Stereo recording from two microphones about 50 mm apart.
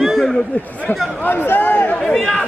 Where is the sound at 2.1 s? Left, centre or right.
Centre.